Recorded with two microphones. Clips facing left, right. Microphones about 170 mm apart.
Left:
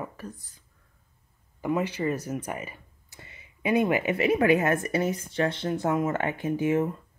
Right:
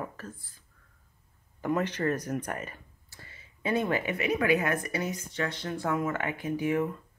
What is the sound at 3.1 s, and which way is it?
A woman's voice, 20° left (ahead or behind).